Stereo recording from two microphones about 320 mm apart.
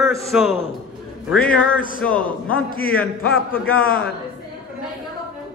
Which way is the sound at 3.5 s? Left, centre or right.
Left.